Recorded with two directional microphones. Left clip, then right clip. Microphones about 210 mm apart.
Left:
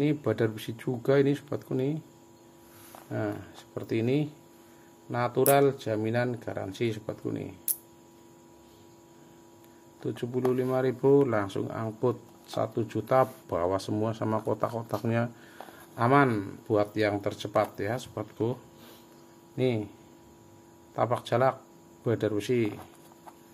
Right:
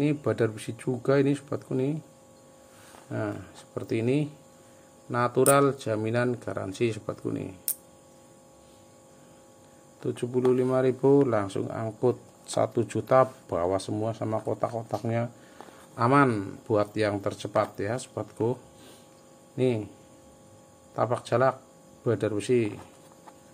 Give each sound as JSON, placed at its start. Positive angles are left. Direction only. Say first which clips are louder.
{"t": 0.0, "sound": "speech", "louder": "right 1 dB", "side_deg": -10}
{"t": 3.1, "sound": "speech", "louder": "even", "side_deg": -10}
{"t": 10.0, "sound": "speech", "louder": "right 4 dB", "side_deg": -10}
{"t": 12.4, "sound": "speech", "louder": "right 4 dB", "side_deg": -20}
{"t": 13.6, "sound": "speech", "louder": "right 1 dB", "side_deg": 0}
{"t": 16.0, "sound": "speech", "louder": "right 1 dB", "side_deg": -10}
{"t": 20.9, "sound": "speech", "louder": "right 1 dB", "side_deg": -10}